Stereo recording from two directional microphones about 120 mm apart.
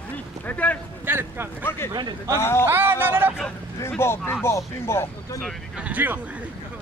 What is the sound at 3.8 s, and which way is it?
Speech, 20° left (ahead or behind).